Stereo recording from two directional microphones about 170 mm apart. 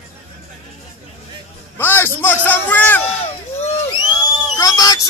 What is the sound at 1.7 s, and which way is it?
A man's voice, 10° left (ahead or behind).